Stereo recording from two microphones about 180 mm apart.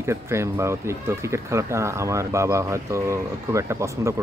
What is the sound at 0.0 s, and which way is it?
Speech, 15° right (ahead or behind).